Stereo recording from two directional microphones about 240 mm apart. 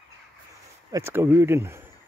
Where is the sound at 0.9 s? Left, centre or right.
Centre.